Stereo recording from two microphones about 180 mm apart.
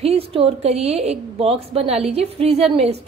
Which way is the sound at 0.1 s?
30° right (ahead or behind).